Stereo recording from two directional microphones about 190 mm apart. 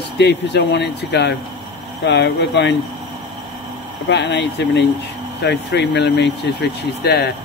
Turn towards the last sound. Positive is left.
turn(degrees=60)  # may be behind; listen again after turning